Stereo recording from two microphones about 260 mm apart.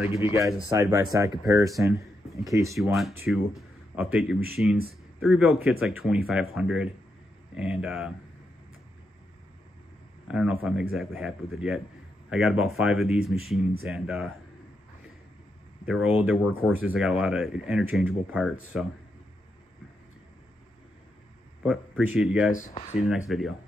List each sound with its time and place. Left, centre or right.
0.7 s speech: centre
2.8 s speech: centre
10.2 s speech: centre
15.9 s speech: centre
21.6 s speech: centre
22.5 s speech: left
23.0 s speech: centre